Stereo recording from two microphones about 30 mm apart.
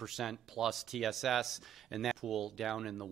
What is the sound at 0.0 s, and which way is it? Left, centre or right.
Speech, centre.